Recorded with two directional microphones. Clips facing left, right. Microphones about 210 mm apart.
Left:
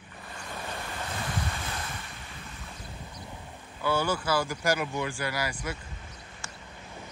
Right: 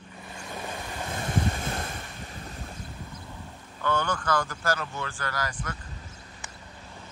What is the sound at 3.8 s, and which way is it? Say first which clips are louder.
Speech: even; 10° left (ahead or behind).